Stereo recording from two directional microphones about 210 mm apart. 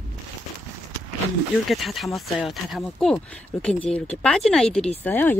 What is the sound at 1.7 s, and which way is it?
Speech, centre (ahead or behind).